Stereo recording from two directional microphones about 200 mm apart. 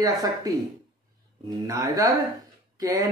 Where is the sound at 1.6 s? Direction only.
15° right (ahead or behind).